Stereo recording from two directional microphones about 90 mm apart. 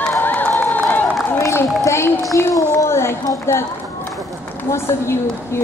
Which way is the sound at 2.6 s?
30° left (ahead or behind).